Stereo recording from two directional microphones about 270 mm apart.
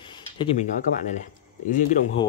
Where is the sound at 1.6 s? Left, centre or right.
Left.